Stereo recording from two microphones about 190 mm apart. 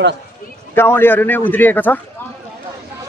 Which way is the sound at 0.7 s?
10° left (ahead or behind).